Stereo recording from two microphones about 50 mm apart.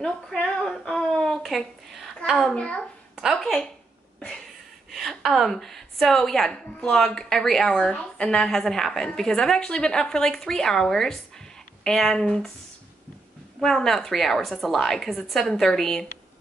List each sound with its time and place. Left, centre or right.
0.0 s female singing: centre
0.6 s a woman's voice: centre
2.5 s female singing: left
3.3 s a woman's voice: centre
4.9 s a woman's voice: centre
13.6 s a woman's voice: centre